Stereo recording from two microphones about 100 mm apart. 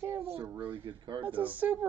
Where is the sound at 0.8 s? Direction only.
55° right (ahead or behind).